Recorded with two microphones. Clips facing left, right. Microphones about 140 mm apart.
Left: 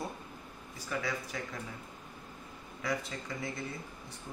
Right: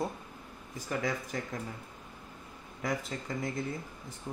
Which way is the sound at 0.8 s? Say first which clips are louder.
Right 3 dB; 40° right (ahead or behind).